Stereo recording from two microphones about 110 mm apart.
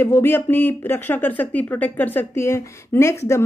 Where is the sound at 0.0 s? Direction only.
20° left (ahead or behind).